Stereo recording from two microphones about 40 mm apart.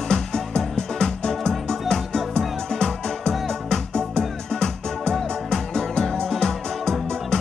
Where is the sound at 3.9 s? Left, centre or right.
Centre.